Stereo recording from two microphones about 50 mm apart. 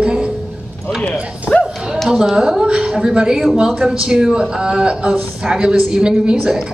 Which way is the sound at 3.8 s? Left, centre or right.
Centre.